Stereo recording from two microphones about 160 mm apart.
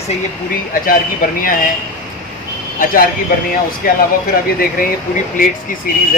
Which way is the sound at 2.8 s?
60° left (ahead or behind).